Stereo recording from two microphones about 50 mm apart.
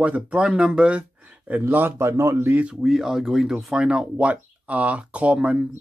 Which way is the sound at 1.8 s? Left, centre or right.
Right.